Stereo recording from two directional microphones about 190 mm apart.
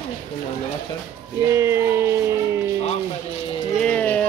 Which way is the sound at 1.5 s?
15° right (ahead or behind).